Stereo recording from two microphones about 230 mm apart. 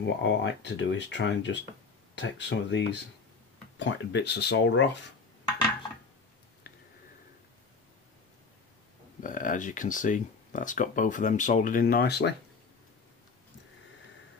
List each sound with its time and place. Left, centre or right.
0.0 s speech: left
9.2 s speech: left